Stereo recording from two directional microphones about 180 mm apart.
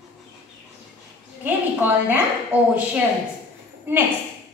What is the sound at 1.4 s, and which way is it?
Speech, 10° right (ahead or behind).